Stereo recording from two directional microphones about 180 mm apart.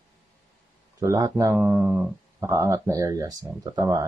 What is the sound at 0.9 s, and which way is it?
Speech, 20° right (ahead or behind).